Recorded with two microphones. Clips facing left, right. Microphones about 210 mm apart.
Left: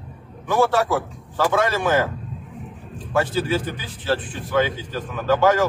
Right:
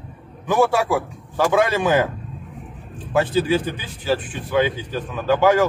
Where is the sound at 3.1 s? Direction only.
15° right (ahead or behind).